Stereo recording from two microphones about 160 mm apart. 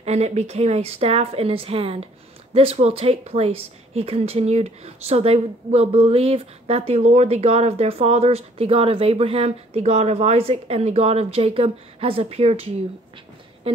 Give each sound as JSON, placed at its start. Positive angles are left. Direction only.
{"t": 0.0, "sound": "a woman's voice", "side_deg": -45}